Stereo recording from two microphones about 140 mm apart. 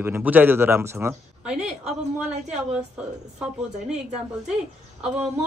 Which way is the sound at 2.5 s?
5° right (ahead or behind).